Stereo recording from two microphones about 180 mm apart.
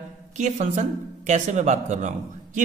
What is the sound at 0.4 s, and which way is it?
A man's voice, 40° right (ahead or behind).